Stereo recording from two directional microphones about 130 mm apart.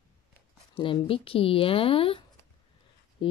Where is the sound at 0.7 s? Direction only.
40° left (ahead or behind).